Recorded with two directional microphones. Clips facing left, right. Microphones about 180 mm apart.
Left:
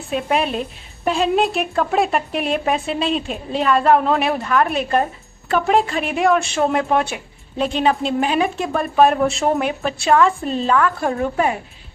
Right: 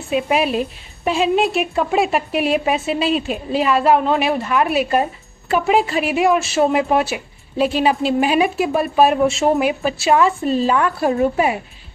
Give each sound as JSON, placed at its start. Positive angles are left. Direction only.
{"t": 0.1, "sound": "a woman's voice", "side_deg": -5}